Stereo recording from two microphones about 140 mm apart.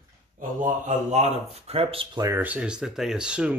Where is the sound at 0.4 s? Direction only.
70° right (ahead or behind); by 2.0 s 45° right (ahead or behind).